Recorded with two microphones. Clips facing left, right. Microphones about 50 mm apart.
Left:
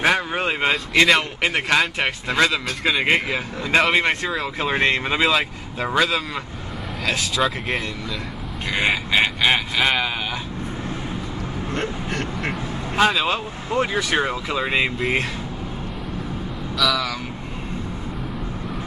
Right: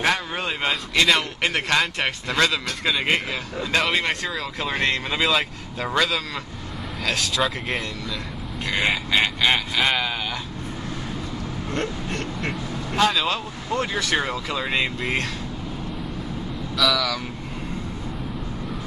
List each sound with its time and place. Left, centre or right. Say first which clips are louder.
0.0 s vehicle: left 3 dB; centre
1.0 s speech: left 1 dB; centre
3.9 s speech: left 4 dB; left; by 10.1 s centre
11.7 s a sound: even; centre
12.9 s speech: left 2 dB; centre
16.7 s speech: even; centre